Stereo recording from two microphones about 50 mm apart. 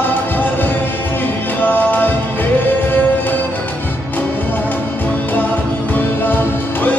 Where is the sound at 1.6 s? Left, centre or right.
Left.